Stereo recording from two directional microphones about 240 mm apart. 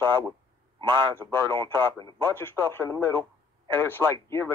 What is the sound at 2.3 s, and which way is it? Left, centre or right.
Speech, centre.